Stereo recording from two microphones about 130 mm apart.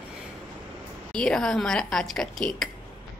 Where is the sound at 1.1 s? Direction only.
5° left (ahead or behind).